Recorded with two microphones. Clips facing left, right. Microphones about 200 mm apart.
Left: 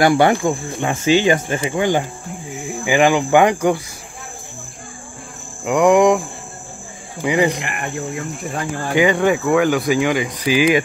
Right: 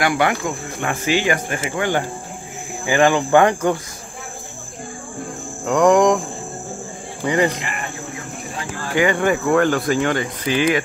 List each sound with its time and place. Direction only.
0.0 s cricket: 30° left (ahead or behind)
0.7 s speech: 25° left (ahead or behind)
5.7 s speech: 10° left (ahead or behind)
7.2 s speech: 10° left (ahead or behind)
8.9 s speech: 15° left (ahead or behind)